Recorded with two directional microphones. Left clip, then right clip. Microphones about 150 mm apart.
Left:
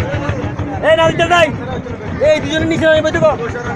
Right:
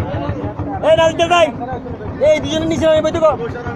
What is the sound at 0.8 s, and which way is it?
Speech, 10° right (ahead or behind).